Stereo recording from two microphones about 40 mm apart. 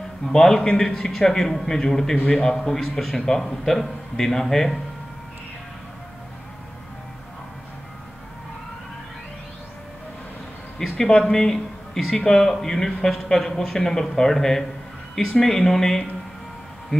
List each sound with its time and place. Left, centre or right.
0.2 s a man's voice: centre
10.8 s speech: centre